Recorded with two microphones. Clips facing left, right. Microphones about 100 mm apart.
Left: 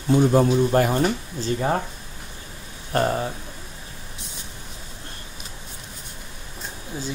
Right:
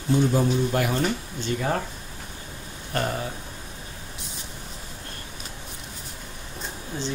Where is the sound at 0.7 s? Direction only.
40° left (ahead or behind).